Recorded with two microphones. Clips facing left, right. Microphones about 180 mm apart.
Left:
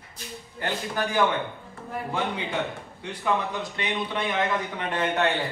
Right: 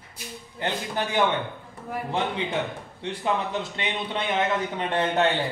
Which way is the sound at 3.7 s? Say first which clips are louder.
Even; 25° right (ahead or behind).